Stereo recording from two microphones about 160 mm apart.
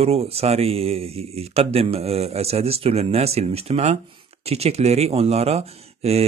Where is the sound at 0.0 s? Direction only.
40° right (ahead or behind).